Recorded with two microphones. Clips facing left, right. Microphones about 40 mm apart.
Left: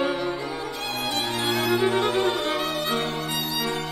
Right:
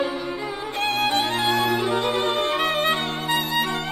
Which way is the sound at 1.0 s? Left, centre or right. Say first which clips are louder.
Right 3 dB; right.